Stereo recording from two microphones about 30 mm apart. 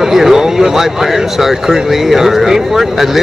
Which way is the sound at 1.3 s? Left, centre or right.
Centre.